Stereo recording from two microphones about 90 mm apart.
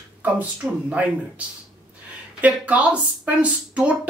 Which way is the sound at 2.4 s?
15° right (ahead or behind).